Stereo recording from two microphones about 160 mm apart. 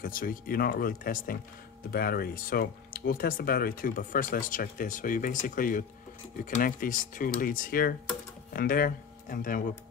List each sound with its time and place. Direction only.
0.0 s speech: 60° left (ahead or behind)